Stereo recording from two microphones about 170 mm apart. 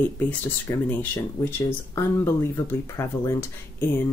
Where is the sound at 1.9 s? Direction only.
15° left (ahead or behind).